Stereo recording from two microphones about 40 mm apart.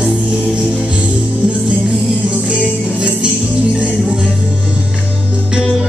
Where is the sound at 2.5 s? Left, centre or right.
Right.